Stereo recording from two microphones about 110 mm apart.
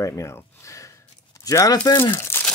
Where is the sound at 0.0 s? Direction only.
25° left (ahead or behind).